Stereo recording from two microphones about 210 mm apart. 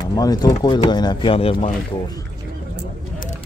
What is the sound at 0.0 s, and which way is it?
Speech, 20° left (ahead or behind).